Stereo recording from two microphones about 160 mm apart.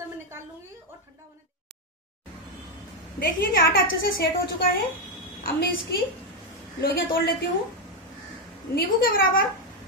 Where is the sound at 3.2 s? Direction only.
65° left (ahead or behind).